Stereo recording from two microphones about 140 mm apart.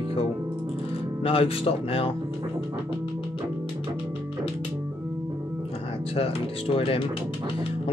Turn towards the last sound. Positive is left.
turn(degrees=40)  # may be behind; listen again after turning